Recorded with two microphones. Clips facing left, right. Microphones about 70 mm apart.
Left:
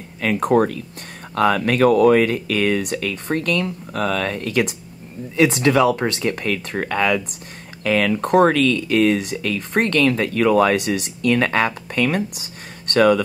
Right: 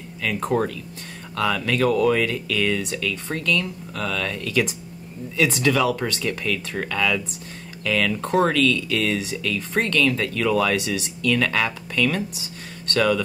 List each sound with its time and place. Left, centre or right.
0.2 s speech: left